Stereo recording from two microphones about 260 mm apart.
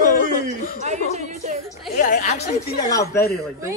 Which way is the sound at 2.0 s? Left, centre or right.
Left.